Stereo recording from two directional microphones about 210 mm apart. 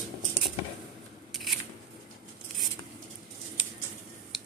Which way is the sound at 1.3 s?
Centre (ahead or behind).